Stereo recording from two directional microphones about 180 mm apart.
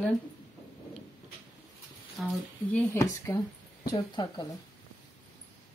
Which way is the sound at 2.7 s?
15° left (ahead or behind).